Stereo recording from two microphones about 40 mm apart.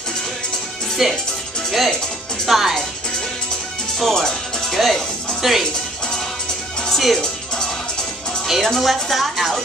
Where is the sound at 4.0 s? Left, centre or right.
Centre.